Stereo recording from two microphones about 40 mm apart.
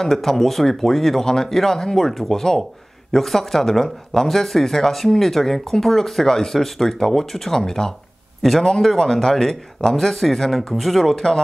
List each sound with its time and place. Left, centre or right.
0.0 s speech: centre